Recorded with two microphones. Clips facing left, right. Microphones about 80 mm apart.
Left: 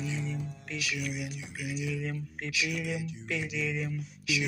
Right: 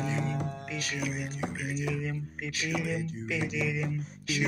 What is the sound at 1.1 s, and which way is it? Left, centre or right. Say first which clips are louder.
Speech: right 1 dB; right.